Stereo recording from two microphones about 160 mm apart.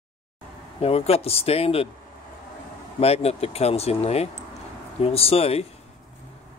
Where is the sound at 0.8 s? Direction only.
40° left (ahead or behind).